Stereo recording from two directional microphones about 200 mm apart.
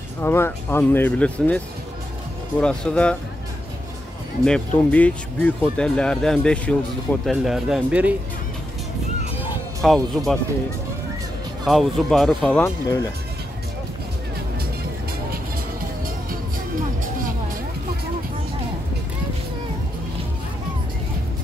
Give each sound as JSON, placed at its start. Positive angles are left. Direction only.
{"t": 0.2, "sound": "speech", "side_deg": 10}
{"t": 2.6, "sound": "speech", "side_deg": 5}
{"t": 4.5, "sound": "speech", "side_deg": 5}
{"t": 9.8, "sound": "speech", "side_deg": 0}
{"t": 11.6, "sound": "speech", "side_deg": 0}
{"t": 16.3, "sound": "music", "side_deg": -45}